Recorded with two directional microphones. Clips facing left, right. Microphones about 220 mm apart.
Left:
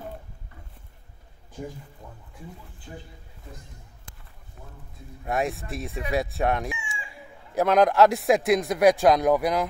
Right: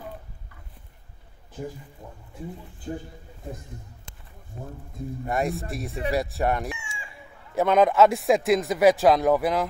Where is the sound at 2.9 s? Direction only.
45° right (ahead or behind).